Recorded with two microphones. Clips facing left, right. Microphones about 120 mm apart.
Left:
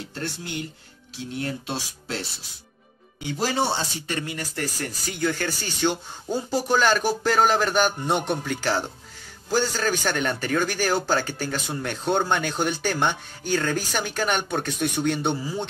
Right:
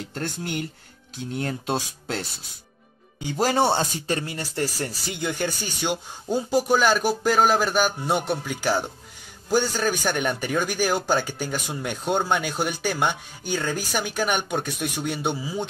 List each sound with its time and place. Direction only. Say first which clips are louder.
1.3 s speech: right 3 dB; 40° right (ahead or behind)
4.1 s speech: right 2 dB; 35° right (ahead or behind); by 15.6 s 10° right (ahead or behind)